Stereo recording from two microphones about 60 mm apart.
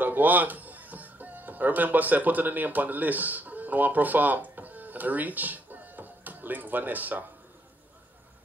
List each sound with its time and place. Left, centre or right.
0.0 s speech: right